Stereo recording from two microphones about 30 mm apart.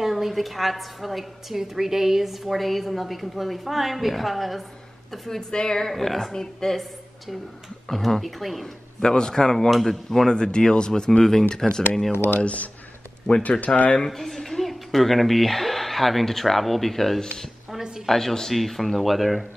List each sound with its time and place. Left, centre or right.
0.0 s a woman's voice: centre
1.6 s a woman's voice: centre
2.4 s a woman's voice: centre
5.5 s speech: left
5.9 s speech: centre
7.9 s a woman's voice: centre
9.0 s speech: left
9.8 s speech: centre
10.2 s speech: left
12.4 s speech: left
14.0 s speech: centre
18.5 s a woman's voice: centre